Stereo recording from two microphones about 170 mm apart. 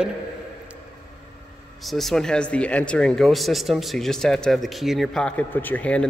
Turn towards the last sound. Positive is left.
turn(degrees=10)  # may be behind; listen again after turning